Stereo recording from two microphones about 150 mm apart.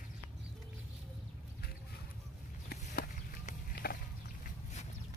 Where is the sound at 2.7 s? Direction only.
90° left.